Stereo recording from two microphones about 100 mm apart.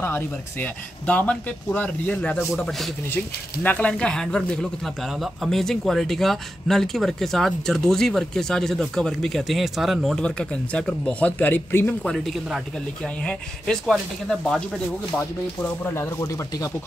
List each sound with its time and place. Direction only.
0.0 s speech: 20° left (ahead or behind); by 10.2 s centre (ahead or behind)
10.2 s speech: 10° left (ahead or behind)
12.0 s speech: 5° left (ahead or behind)
15.1 s speech: 20° left (ahead or behind)